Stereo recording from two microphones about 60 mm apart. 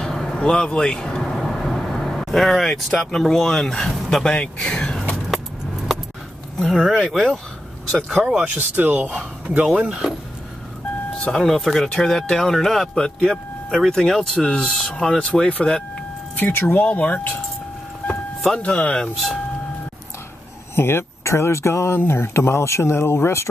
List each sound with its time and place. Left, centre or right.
0.0 s vehicle: centre
0.4 s speech: centre
7.0 s speech: centre
8.2 s speech: centre
8.5 s speech: right
9.8 s speech: centre
11.3 s speech: centre
16.3 s speech: left
16.8 s speech: left
18.6 s speech: left
20.7 s speech: left